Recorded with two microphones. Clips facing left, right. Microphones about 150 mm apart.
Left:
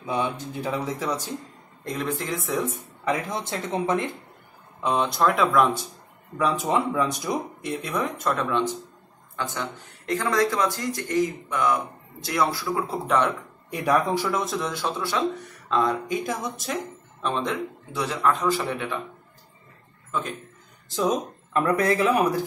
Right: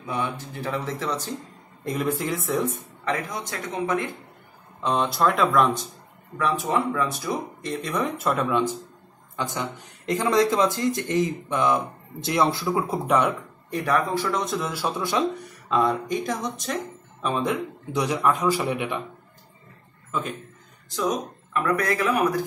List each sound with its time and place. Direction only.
0.0 s speech: 20° left (ahead or behind)
1.9 s speech: 5° right (ahead or behind)
3.1 s speech: 25° left (ahead or behind)
4.8 s speech: centre (ahead or behind)
6.3 s speech: 20° left (ahead or behind)
7.7 s a man's voice: centre (ahead or behind); by 12.7 s 25° right (ahead or behind)
12.8 s a man's voice: 10° right (ahead or behind)
13.7 s speech: 10° left (ahead or behind); by 15.2 s 15° right (ahead or behind)
15.7 s speech: 5° right (ahead or behind)
17.2 s a man's voice: 10° right (ahead or behind)
20.1 s a man's voice: 5° right (ahead or behind)
21.5 s speech: 30° left (ahead or behind)